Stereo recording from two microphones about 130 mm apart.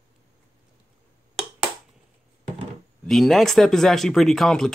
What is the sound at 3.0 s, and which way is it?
Speech, centre (ahead or behind).